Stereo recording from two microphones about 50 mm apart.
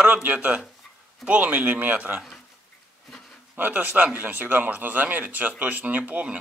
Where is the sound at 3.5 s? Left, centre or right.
Right.